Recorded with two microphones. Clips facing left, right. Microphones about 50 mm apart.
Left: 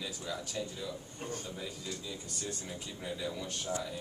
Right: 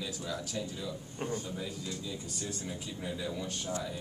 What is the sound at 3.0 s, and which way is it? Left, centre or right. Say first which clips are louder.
Speech: right 1 dB; centre.